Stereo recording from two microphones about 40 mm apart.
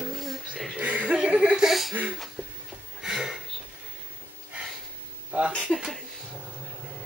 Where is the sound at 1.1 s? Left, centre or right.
Right.